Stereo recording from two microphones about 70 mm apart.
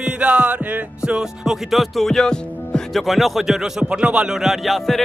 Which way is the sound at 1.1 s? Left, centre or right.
Centre.